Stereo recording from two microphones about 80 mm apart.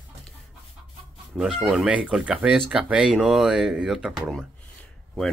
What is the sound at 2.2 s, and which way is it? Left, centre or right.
Speech, centre.